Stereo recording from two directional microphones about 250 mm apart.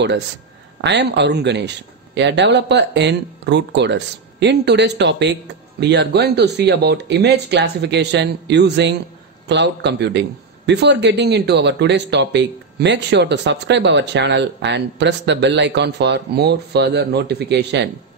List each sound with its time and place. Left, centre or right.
0.7 s speech: right